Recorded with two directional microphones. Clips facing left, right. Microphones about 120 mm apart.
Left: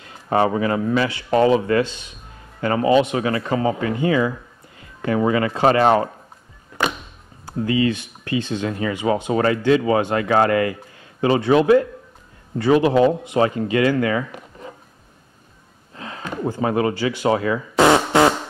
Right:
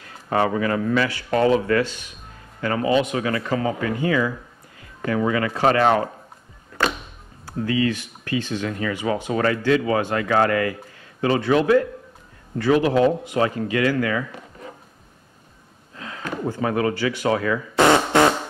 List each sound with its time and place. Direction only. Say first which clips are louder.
0.3 s speech: left 2 dB; 25° left (ahead or behind)
7.4 s speech: left 2 dB; 25° left (ahead or behind)
16.0 s a sound: even; 25° left (ahead or behind)
16.6 s speech: left 2 dB; 25° left (ahead or behind)